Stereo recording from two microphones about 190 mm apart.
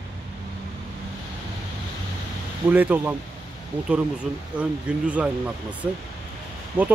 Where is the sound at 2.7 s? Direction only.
10° right (ahead or behind).